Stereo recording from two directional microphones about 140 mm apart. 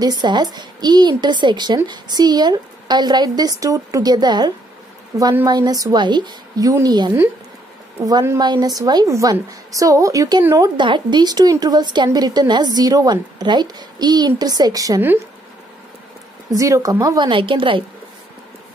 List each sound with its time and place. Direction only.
0.0 s a woman's voice: 30° right (ahead or behind)
10.8 s a woman's voice: 35° right (ahead or behind)
16.5 s a woman's voice: 25° right (ahead or behind)